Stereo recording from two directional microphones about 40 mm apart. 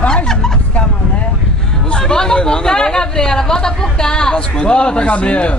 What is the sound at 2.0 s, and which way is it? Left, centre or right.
Speech, centre.